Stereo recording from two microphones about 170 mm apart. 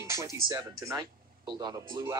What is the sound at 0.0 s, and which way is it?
Music, 15° right (ahead or behind).